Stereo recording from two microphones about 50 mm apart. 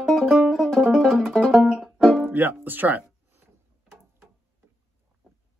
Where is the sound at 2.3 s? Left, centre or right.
Right.